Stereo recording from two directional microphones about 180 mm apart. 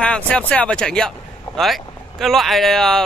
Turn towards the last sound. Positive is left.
turn(degrees=0)  # may be behind; listen again after turning